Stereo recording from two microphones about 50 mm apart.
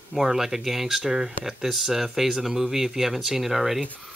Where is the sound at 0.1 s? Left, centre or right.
Centre.